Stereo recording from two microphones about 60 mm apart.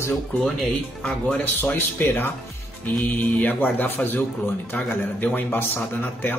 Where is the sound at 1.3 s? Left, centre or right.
Left.